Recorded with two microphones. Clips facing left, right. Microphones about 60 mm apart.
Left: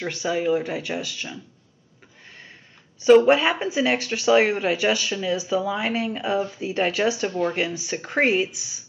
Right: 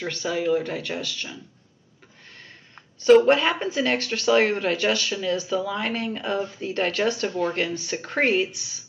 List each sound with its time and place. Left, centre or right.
0.0 s speech: centre
3.0 s speech: centre